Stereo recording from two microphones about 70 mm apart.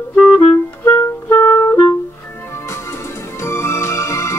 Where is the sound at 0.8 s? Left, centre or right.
Left.